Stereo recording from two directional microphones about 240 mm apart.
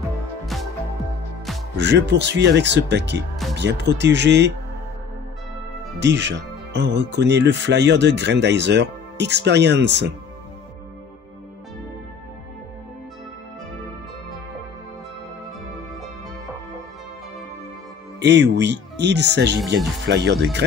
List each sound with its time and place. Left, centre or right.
1.8 s speech: right
5.9 s speech: right
18.2 s speech: right